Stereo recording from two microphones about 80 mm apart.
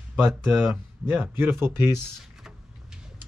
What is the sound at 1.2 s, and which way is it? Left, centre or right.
Speech, right.